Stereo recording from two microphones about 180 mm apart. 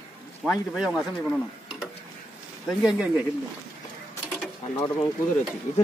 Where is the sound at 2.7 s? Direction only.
Centre (ahead or behind).